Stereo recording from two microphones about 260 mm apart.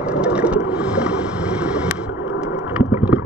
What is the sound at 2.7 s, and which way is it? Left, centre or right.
Boat, centre.